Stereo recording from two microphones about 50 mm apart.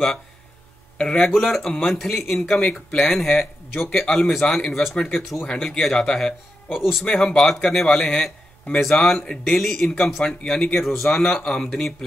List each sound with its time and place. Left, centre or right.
0.9 s speech: centre
1.3 s speech: centre
4.9 s speech: centre
6.7 s speech: centre
7.1 s speech: centre
7.9 s speech: centre
8.8 s speech: centre